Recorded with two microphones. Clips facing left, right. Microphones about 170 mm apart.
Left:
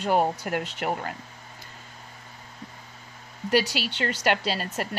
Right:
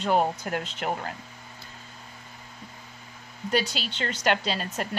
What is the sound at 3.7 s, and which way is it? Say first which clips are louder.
A woman's voice: left 3 dB; 10° left (ahead or behind).